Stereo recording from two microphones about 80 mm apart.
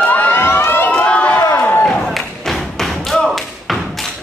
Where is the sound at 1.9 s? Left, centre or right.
Centre.